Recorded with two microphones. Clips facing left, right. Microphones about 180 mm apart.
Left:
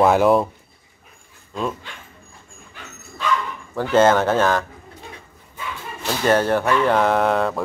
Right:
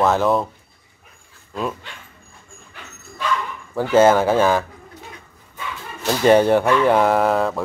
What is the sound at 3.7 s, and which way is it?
Speech, 10° right (ahead or behind).